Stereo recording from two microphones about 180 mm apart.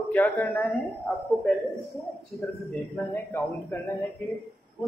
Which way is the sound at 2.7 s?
10° left (ahead or behind).